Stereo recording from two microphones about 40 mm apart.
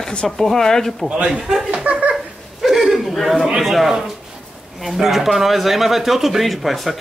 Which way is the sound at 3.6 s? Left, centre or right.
Centre.